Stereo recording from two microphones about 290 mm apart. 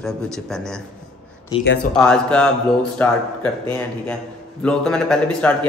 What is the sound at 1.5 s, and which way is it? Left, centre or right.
Speech, centre.